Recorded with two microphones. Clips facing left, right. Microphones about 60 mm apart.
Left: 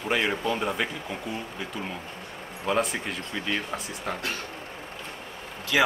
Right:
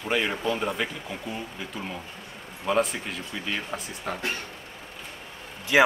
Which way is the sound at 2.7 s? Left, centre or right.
Centre.